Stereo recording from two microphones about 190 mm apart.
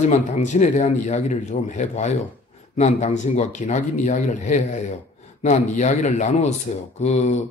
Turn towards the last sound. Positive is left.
turn(degrees=35)  # may be behind; listen again after turning